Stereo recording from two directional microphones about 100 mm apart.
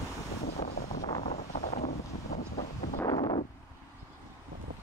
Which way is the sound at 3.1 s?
60° left (ahead or behind).